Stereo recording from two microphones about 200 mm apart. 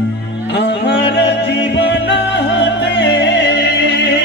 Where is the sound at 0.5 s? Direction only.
60° left (ahead or behind).